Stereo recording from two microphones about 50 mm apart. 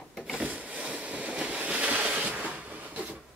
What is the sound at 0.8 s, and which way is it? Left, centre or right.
Train, right.